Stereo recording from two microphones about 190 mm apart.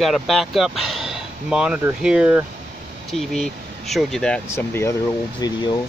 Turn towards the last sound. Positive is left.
turn(degrees=20)  # may be behind; listen again after turning